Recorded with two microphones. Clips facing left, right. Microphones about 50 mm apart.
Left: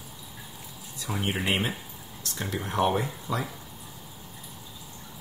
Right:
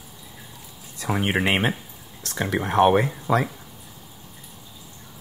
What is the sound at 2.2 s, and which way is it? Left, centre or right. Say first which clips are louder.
Speech: right 8 dB; right.